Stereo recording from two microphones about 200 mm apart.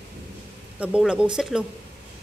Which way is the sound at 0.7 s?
5° right (ahead or behind).